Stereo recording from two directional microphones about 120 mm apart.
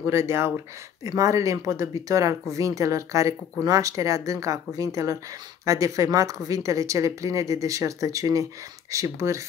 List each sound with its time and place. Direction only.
0.0 s a woman's voice: 20° right (ahead or behind)